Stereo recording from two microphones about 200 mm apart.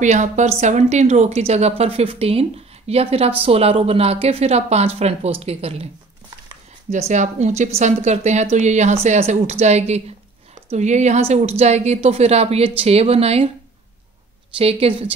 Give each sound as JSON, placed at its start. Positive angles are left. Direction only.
{"t": 0.0, "sound": "a woman's voice", "side_deg": -35}
{"t": 6.9, "sound": "a woman's voice", "side_deg": -35}
{"t": 14.6, "sound": "a woman's voice", "side_deg": -30}